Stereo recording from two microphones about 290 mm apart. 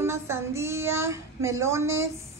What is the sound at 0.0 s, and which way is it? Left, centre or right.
Child singing, centre.